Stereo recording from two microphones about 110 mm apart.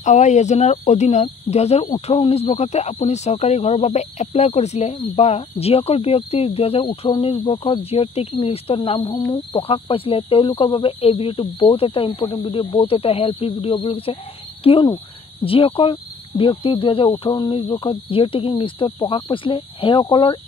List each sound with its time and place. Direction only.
0.0 s speech: 90° left; by 9.1 s 60° left (ahead or behind)
9.1 s speech: 40° left (ahead or behind)
9.6 s speech: 60° left (ahead or behind)
17.3 s speech: 40° left (ahead or behind)
17.6 s speech: 55° left (ahead or behind)